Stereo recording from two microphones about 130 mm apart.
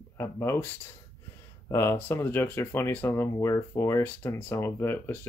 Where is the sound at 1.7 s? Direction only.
20° left (ahead or behind).